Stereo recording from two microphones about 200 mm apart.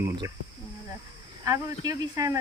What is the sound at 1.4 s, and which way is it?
Speech, 15° right (ahead or behind).